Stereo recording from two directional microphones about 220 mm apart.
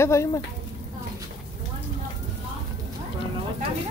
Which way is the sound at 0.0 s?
10° left (ahead or behind).